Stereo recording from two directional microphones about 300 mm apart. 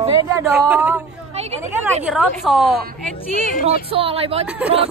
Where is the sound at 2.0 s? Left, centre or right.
Centre.